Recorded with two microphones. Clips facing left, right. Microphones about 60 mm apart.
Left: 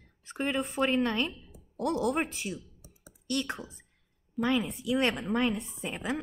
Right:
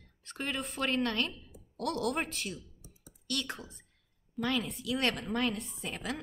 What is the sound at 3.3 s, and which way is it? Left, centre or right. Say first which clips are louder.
A woman's voice: left 5 dB; left.